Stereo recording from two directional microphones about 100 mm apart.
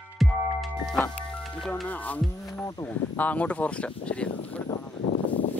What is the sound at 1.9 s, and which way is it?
Speech, 15° left (ahead or behind).